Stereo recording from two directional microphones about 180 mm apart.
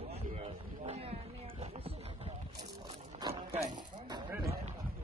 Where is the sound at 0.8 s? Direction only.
35° right (ahead or behind).